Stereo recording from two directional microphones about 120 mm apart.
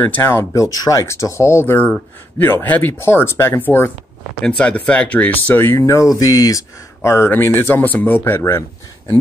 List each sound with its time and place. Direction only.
0.0 s speech: 20° left (ahead or behind)